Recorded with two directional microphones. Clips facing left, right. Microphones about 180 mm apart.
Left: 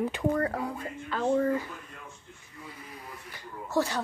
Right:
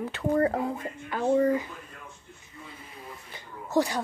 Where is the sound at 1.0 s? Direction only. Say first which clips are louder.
Right 3 dB; 10° right (ahead or behind).